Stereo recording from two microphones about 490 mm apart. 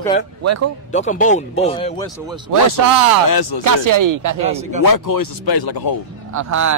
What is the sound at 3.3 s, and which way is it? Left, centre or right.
Speech, left.